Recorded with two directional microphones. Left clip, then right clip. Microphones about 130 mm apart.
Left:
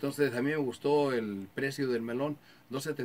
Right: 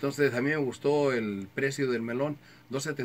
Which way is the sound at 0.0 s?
15° left (ahead or behind).